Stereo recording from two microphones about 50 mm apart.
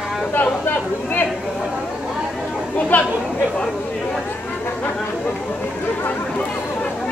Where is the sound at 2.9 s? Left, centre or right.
Left.